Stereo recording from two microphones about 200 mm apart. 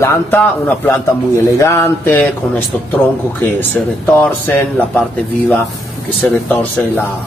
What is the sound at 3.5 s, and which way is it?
A man's voice, 10° left (ahead or behind).